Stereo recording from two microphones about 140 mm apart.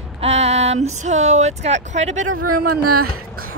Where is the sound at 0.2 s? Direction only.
50° right (ahead or behind).